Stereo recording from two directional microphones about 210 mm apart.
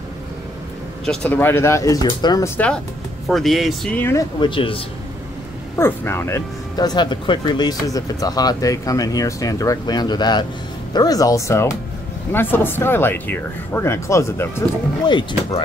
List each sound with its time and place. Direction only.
1.0 s speech: 5° left (ahead or behind); by 4.8 s 25° left (ahead or behind)
5.8 s speech: 10° left (ahead or behind)
15.0 s speech: 20° left (ahead or behind)